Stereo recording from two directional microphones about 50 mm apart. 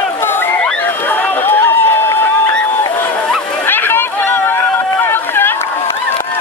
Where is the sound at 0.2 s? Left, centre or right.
Left.